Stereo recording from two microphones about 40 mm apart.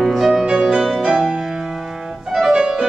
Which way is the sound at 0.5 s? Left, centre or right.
Right.